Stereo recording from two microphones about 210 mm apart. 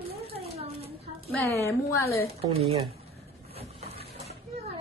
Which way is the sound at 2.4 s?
25° right (ahead or behind).